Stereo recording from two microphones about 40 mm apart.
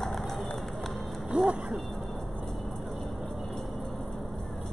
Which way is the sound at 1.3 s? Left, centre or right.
Right.